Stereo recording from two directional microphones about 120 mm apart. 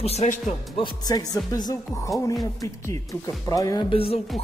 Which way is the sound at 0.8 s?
30° left (ahead or behind).